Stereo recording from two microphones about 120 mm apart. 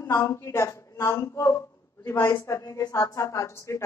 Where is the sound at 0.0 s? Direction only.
25° left (ahead or behind).